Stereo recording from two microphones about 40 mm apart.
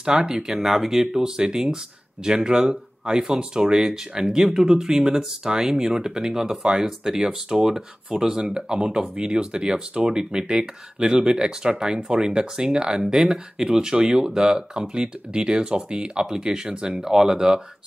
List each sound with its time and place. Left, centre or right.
0.0 s speech: centre